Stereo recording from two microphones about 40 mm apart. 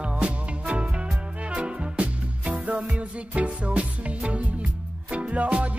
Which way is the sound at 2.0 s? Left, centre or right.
Right.